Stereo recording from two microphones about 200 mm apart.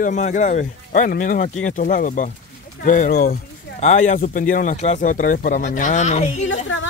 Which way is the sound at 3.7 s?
35° left (ahead or behind).